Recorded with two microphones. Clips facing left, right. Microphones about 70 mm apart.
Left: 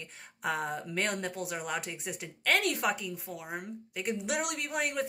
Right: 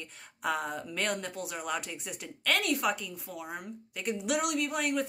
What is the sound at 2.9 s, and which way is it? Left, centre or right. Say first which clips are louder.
Speech: left 1 dB; left.